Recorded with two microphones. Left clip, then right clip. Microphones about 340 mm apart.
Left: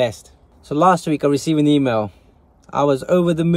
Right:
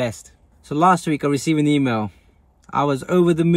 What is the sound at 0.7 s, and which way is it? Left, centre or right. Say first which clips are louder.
Speech: left 1 dB; left.